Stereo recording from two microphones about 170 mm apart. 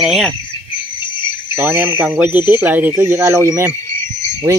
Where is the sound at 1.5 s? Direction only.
10° right (ahead or behind).